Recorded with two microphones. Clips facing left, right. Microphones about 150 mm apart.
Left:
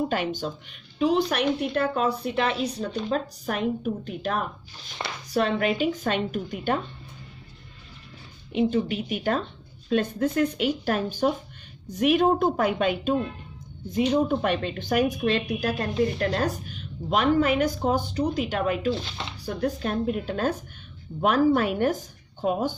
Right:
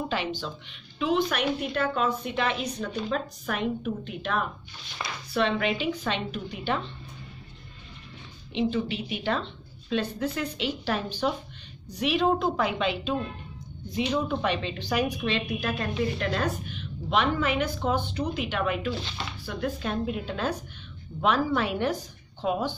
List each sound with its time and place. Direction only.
0.1 s a woman's voice: 45° left (ahead or behind)
8.5 s a woman's voice: 45° left (ahead or behind)